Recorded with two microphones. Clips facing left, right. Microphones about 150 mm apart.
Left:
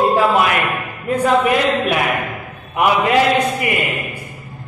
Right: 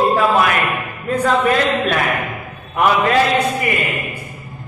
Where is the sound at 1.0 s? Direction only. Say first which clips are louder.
Left 1 dB; 15° left (ahead or behind).